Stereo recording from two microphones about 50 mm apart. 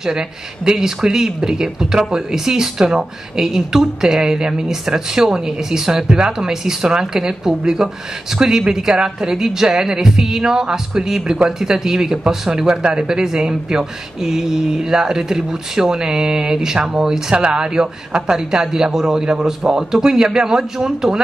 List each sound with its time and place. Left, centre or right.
0.0 s speech: centre